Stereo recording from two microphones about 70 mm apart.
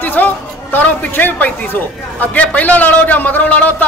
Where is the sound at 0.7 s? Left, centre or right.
Left.